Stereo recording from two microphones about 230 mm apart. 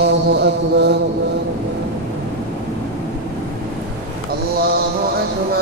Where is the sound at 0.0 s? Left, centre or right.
Right.